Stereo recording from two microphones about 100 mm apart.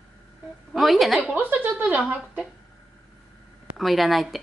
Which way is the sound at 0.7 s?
Centre (ahead or behind).